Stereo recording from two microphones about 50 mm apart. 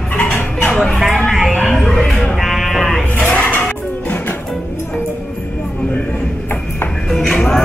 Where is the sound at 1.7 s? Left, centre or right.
Centre.